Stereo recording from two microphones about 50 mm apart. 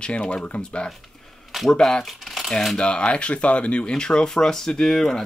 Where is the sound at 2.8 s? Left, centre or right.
Left.